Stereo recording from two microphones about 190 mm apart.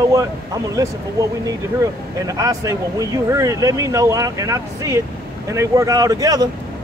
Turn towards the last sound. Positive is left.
turn(degrees=-20)  # may be behind; listen again after turning